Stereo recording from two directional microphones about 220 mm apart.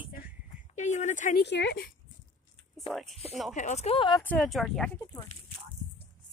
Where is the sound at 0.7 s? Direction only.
30° left (ahead or behind).